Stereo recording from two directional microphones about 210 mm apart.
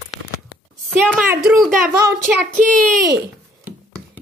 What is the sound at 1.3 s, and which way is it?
A woman's voice, 5° right (ahead or behind).